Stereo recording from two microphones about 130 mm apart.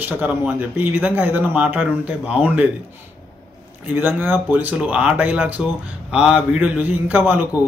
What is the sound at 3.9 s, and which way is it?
A man's voice, 15° right (ahead or behind).